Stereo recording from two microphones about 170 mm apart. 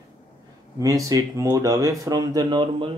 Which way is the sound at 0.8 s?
20° right (ahead or behind).